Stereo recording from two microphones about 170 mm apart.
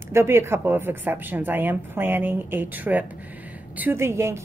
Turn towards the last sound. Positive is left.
turn(degrees=-15)  # may be behind; listen again after turning